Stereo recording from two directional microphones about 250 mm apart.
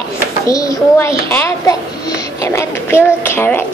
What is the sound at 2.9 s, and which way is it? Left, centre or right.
Speech, centre.